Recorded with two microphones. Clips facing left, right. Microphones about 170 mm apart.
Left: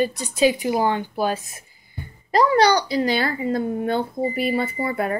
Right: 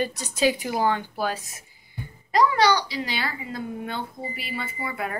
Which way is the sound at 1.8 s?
45° left (ahead or behind).